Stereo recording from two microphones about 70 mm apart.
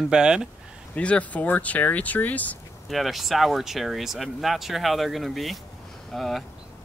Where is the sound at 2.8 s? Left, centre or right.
Centre.